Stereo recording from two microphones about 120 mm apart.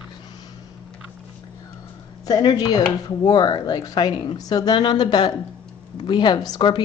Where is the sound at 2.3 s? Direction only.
35° left (ahead or behind).